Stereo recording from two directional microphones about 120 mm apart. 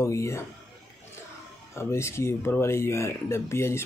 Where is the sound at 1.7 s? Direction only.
20° left (ahead or behind).